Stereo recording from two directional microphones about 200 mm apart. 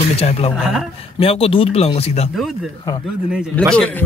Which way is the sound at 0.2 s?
30° left (ahead or behind).